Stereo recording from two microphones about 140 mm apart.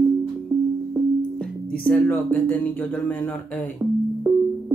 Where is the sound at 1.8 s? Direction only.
15° left (ahead or behind).